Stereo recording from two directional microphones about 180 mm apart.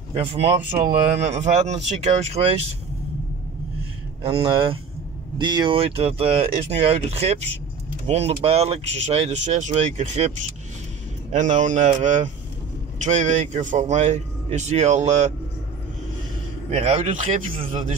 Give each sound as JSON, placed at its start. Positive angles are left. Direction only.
{"t": 0.1, "sound": "speech", "side_deg": -30}
{"t": 4.2, "sound": "speech", "side_deg": -30}
{"t": 11.3, "sound": "speech", "side_deg": -45}
{"t": 16.7, "sound": "speech", "side_deg": -35}